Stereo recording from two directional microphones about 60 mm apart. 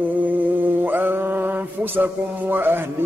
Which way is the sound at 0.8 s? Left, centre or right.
Right.